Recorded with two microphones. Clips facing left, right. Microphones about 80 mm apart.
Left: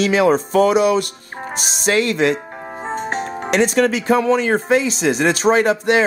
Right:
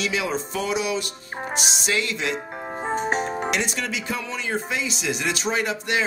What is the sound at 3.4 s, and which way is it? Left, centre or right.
Speech, left.